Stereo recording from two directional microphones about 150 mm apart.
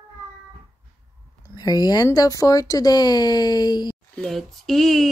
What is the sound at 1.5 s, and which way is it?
Speech, 25° left (ahead or behind).